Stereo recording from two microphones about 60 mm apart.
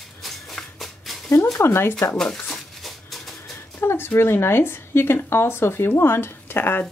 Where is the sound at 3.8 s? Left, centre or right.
Left.